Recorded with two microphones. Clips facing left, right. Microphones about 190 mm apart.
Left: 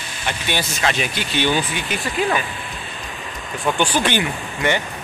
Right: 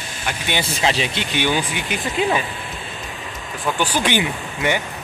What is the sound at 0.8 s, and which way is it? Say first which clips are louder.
Speech: right 1 dB; 25° right (ahead or behind).